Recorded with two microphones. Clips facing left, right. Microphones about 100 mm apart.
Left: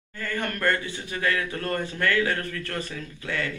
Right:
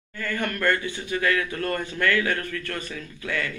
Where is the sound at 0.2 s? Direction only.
35° left (ahead or behind).